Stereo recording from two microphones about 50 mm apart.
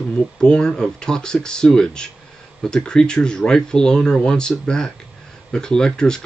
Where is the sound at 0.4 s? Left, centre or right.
Centre.